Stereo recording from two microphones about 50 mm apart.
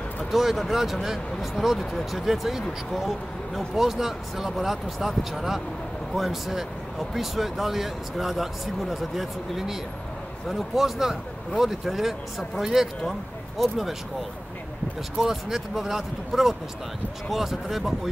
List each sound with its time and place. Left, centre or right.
0.3 s speech: centre
15.1 s speech: centre